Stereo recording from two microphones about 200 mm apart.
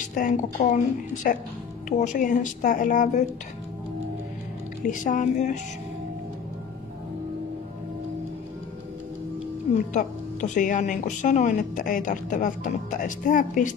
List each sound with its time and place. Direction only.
0.0 s a woman's voice: 40° left (ahead or behind)
4.8 s a woman's voice: 40° left (ahead or behind)
9.9 s a woman's voice: 40° left (ahead or behind)